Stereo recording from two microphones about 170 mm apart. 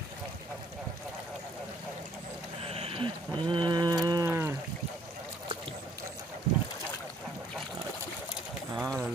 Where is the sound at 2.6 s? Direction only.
35° right (ahead or behind); by 4.6 s 15° right (ahead or behind).